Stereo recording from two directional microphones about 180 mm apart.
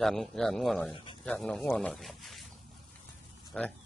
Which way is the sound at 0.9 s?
30° left (ahead or behind).